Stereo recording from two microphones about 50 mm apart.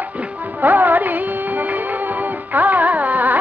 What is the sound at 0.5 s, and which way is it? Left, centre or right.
Music of bollywood, right.